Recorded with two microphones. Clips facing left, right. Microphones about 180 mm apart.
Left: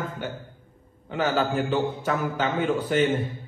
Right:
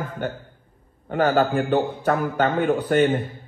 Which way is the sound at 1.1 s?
50° right (ahead or behind).